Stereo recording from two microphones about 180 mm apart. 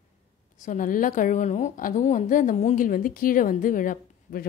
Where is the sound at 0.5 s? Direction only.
45° left (ahead or behind).